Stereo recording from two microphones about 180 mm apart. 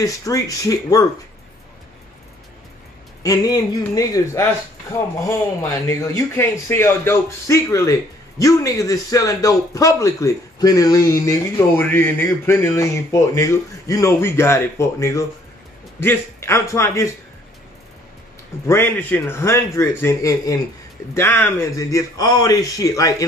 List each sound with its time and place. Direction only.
0.0 s speech: 20° left (ahead or behind)
3.2 s speech: 20° left (ahead or behind)
5.6 s speech: 15° left (ahead or behind)
18.7 s speech: 10° left (ahead or behind)